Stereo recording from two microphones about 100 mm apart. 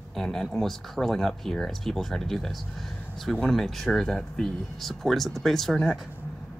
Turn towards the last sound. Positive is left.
turn(degrees=0)  # may be behind; listen again after turning